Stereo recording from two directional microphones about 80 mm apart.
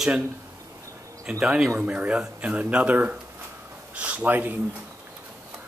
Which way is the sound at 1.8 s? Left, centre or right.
Centre.